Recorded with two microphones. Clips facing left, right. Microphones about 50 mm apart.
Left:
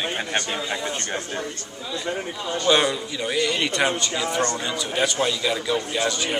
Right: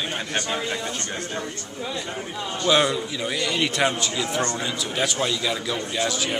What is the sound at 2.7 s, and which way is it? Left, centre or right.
A man's voice, centre.